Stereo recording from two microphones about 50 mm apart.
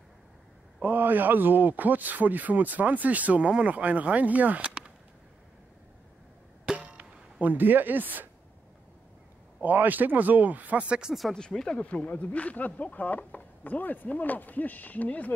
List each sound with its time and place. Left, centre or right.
0.8 s a man's voice: right
6.7 s a sound: right
9.6 s a man's voice: right
11.1 s speech: centre
11.3 s speech: centre
11.8 s speech: left